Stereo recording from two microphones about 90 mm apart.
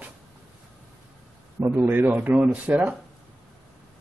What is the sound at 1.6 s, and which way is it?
Speech, 25° right (ahead or behind).